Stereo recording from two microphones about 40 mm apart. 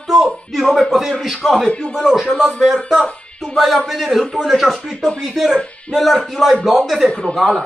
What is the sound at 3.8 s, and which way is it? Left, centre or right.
Speech, centre.